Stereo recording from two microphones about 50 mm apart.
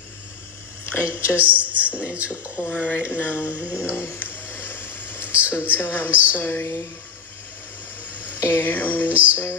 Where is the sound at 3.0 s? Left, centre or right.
Left.